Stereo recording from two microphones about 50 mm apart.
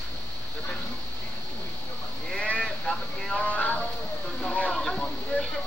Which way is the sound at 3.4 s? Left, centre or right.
Left.